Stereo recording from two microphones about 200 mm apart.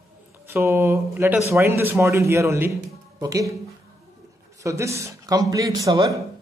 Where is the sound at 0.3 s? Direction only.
15° right (ahead or behind).